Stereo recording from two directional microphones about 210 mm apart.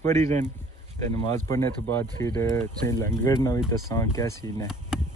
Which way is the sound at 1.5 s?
10° left (ahead or behind).